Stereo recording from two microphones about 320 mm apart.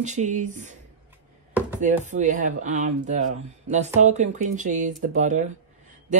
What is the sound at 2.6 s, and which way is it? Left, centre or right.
Speech, right.